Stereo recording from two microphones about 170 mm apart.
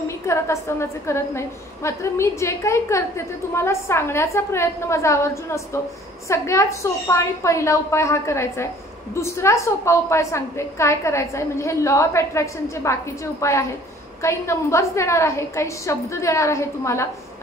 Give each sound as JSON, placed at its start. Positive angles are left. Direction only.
{"t": 0.3, "sound": "a woman's voice", "side_deg": 15}